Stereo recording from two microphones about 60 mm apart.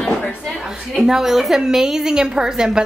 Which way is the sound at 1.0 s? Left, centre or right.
Centre.